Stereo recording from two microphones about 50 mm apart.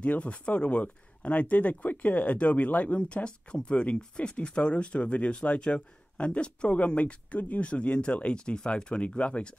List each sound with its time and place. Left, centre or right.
0.0 s speech: left